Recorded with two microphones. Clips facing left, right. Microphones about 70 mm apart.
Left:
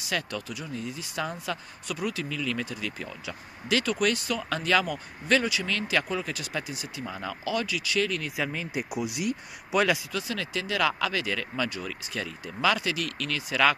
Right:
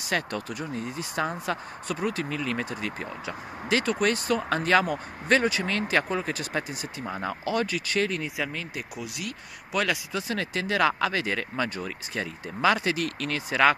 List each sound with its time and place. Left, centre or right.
0.0 s speech: right
8.5 s speech: centre
10.1 s speech: right